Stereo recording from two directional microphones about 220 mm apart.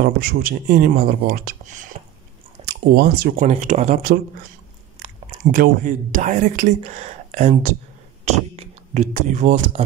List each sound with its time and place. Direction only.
0.0 s speech: 40° right (ahead or behind)
2.6 s a sound: 25° right (ahead or behind)
3.0 s speech: 40° right (ahead or behind)